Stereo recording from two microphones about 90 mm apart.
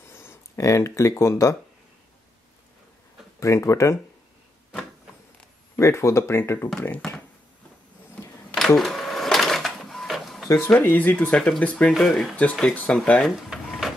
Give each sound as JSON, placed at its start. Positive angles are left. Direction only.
{"t": 0.0, "sound": "speech", "side_deg": 25}
{"t": 3.3, "sound": "speech", "side_deg": 35}
{"t": 5.8, "sound": "speech", "side_deg": 30}
{"t": 8.5, "sound": "sewing machine", "side_deg": 0}
{"t": 10.6, "sound": "speech", "side_deg": 20}
{"t": 11.9, "sound": "speech", "side_deg": 0}
{"t": 12.7, "sound": "speech", "side_deg": 15}
{"t": 13.2, "sound": "printer", "side_deg": 0}